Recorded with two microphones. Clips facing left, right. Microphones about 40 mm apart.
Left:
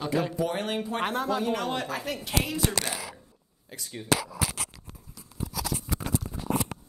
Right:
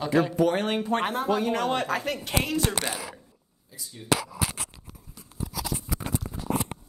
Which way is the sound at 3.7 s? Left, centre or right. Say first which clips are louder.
Left 5 dB; left.